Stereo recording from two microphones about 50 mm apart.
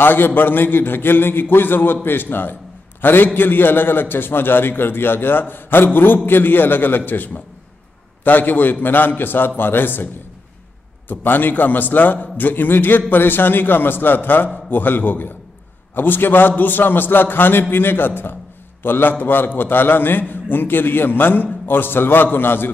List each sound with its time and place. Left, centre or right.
0.0 s a man's voice: left
8.2 s a man's voice: left
11.1 s a man's voice: left